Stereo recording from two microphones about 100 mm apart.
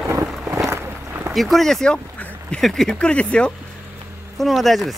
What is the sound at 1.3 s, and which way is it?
Speech, centre (ahead or behind).